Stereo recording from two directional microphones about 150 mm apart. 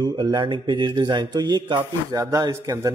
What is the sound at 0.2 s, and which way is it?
A man's voice, 30° right (ahead or behind).